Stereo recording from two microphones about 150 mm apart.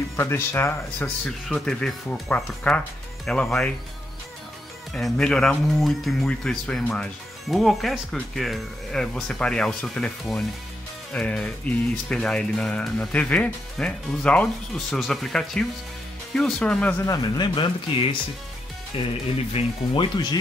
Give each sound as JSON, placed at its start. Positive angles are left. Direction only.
{"t": 0.1, "sound": "speech", "side_deg": 15}
{"t": 4.9, "sound": "speech", "side_deg": 5}
{"t": 17.0, "sound": "speech", "side_deg": 25}
{"t": 18.9, "sound": "speech", "side_deg": 35}